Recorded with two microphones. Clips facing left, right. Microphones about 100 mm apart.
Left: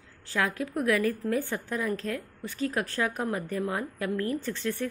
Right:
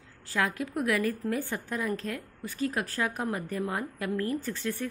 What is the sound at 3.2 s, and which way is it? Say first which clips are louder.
A woman's voice: left 1 dB; 20° right (ahead or behind).